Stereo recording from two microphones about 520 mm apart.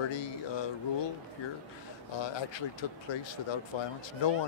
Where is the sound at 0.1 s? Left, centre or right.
Left.